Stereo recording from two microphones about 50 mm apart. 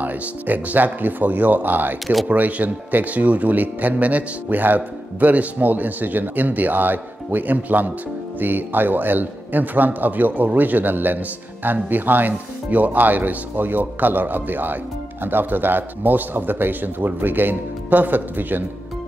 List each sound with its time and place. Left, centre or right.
0.0 s speech: right